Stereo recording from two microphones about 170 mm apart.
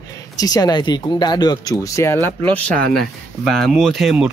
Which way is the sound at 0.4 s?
20° left (ahead or behind).